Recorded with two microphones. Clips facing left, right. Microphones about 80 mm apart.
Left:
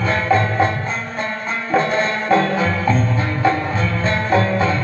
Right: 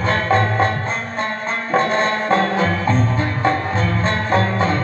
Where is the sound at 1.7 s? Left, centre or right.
Right.